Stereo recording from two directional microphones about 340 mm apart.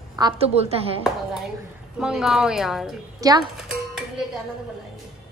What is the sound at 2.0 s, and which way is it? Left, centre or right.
A woman's voice, centre.